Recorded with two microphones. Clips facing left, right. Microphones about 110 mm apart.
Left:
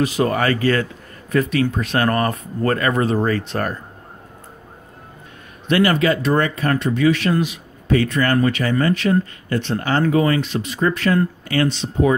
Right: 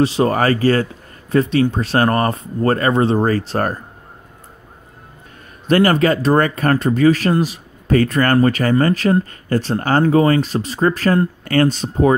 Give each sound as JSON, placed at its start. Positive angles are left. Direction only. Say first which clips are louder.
{"t": 0.0, "sound": "speech", "louder": "right 3 dB", "side_deg": -30}
{"t": 5.7, "sound": "speech", "louder": "right 3 dB", "side_deg": -40}